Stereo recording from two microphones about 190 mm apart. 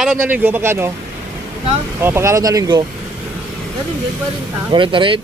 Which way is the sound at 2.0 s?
15° right (ahead or behind).